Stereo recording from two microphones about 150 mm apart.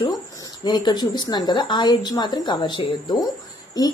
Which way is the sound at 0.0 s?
25° left (ahead or behind).